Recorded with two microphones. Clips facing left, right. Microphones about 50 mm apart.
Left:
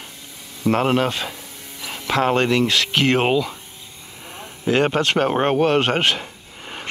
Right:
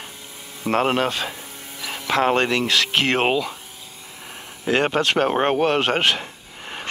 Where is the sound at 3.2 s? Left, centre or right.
Centre.